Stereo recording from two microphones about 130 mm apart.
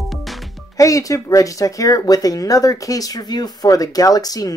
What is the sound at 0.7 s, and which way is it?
Speech, 25° left (ahead or behind).